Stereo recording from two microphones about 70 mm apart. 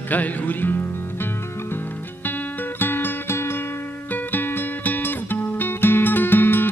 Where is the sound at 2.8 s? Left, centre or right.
Left.